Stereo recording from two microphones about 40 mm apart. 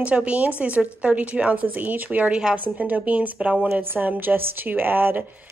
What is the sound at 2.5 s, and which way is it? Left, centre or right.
A woman's voice, right.